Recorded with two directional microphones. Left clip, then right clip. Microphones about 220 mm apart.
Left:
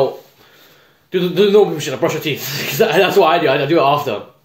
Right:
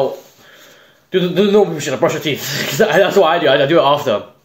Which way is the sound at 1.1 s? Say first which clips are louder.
Left 1 dB; 15° right (ahead or behind).